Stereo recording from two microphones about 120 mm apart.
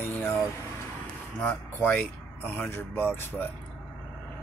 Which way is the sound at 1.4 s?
10° left (ahead or behind).